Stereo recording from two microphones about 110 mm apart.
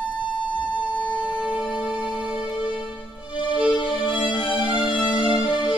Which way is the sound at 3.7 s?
45° left (ahead or behind).